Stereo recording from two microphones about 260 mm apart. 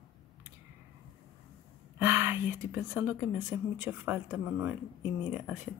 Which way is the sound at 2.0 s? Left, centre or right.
Centre.